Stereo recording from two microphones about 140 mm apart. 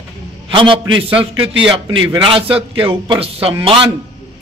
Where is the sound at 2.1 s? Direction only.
35° right (ahead or behind).